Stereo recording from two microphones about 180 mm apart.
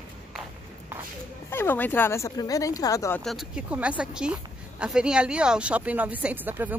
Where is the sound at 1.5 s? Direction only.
10° left (ahead or behind).